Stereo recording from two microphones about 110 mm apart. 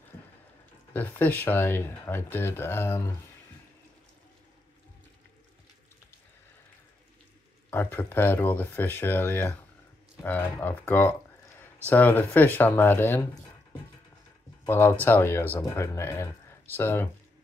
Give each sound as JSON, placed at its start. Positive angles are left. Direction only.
{"t": 0.9, "sound": "speech", "side_deg": 15}
{"t": 7.7, "sound": "speech", "side_deg": 20}
{"t": 14.7, "sound": "speech", "side_deg": 20}